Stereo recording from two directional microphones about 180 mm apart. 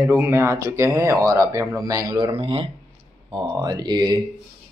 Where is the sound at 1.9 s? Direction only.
20° right (ahead or behind).